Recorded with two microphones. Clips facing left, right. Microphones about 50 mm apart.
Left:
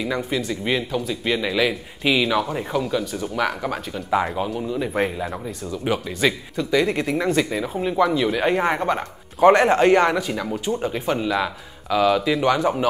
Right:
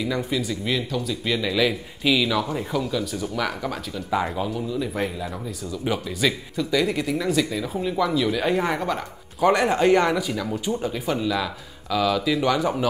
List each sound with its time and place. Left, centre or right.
0.0 s speech: centre
7.9 s speech: centre